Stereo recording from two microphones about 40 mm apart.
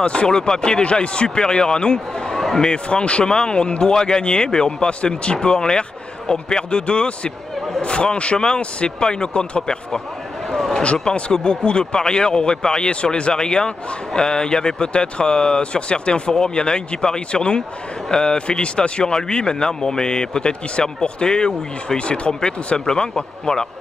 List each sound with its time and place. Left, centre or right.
0.0 s a man's voice: left
0.3 s a man's voice: centre
2.3 s a sound: centre
2.6 s a man's voice: left
10.5 s a sound: centre
11.3 s a man's voice: left